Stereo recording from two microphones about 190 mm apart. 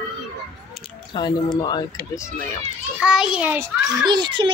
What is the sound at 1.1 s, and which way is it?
Speech, 25° left (ahead or behind).